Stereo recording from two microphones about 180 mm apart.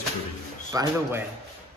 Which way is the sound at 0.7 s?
15° right (ahead or behind).